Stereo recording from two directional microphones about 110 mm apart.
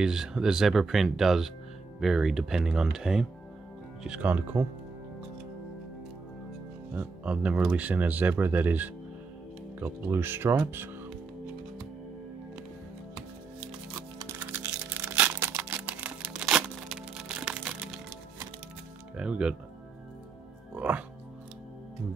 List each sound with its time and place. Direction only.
0.0 s speech: 5° right (ahead or behind)
7.0 s speech: 10° right (ahead or behind)
14.4 s music: 20° right (ahead or behind)
19.1 s speech: 10° right (ahead or behind)
20.7 s music: 15° right (ahead or behind)